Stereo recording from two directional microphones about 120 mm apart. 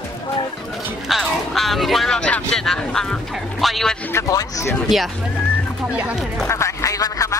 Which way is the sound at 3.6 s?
Centre (ahead or behind).